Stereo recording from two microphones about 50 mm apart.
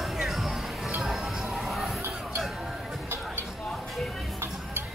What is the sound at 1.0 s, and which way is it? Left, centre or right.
Music, centre.